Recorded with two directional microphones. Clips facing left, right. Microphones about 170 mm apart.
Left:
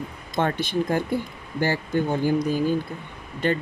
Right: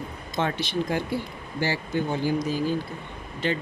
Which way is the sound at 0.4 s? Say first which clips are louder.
Left 3 dB; 50° left (ahead or behind).